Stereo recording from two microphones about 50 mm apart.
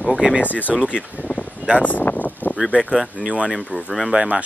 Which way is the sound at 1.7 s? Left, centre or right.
Left.